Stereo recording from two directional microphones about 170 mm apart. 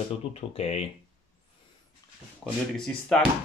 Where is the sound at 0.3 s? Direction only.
35° left (ahead or behind).